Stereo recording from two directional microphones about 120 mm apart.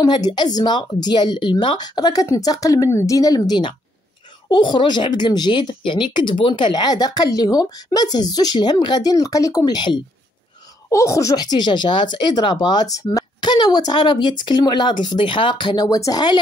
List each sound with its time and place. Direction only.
0.0 s speech: 35° left (ahead or behind)